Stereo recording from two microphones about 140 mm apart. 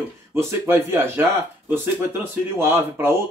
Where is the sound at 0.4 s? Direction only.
20° right (ahead or behind).